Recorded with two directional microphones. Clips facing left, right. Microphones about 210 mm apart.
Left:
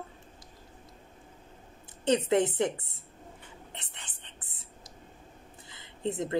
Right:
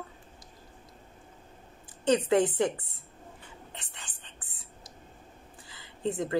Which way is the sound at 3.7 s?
20° left (ahead or behind).